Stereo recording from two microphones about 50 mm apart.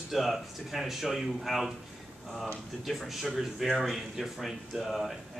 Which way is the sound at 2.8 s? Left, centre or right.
Centre.